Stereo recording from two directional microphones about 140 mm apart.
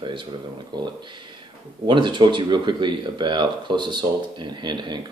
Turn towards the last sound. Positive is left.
turn(degrees=-30)  # may be behind; listen again after turning